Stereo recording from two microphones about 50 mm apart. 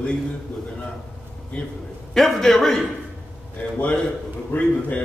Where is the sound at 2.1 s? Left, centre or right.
Centre.